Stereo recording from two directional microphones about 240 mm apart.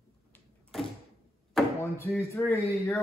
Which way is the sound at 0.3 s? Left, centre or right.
Centre.